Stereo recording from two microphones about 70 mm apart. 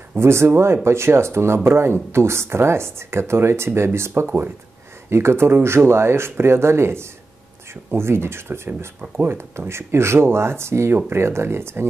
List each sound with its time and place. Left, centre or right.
0.2 s speech: right